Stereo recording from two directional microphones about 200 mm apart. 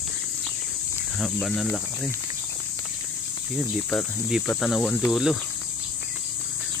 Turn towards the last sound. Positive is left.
turn(degrees=0)  # may be behind; listen again after turning